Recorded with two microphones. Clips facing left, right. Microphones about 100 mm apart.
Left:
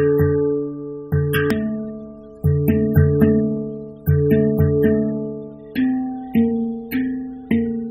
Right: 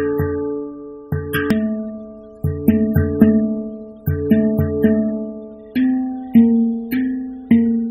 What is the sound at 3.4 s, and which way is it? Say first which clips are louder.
Music: right 1 dB; 45° right (ahead or behind).